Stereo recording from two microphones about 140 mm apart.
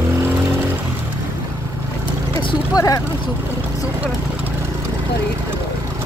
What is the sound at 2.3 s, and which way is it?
Speech, 25° left (ahead or behind).